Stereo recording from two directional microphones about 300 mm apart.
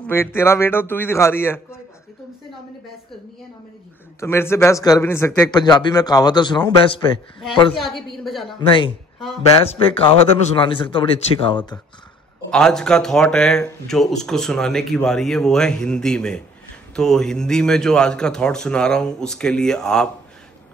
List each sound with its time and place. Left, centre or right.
0.0 s speech: centre
4.2 s speech: centre
7.9 s a woman's voice: centre
8.5 s speech: centre
12.4 s speech: centre